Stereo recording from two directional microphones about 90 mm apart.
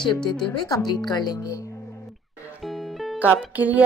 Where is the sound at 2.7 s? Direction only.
Centre (ahead or behind).